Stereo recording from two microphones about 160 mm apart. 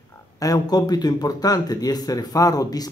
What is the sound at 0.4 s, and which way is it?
Speech, 25° left (ahead or behind).